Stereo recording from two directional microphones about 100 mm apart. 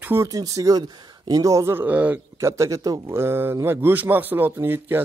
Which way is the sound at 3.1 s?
25° right (ahead or behind).